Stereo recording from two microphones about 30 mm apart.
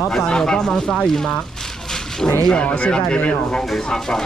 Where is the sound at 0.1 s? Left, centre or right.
Left.